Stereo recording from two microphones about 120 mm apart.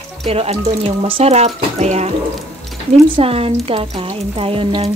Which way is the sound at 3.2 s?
55° right (ahead or behind).